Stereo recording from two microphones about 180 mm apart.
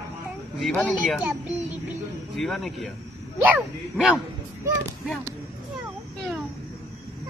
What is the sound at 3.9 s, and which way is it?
Speech, 5° right (ahead or behind).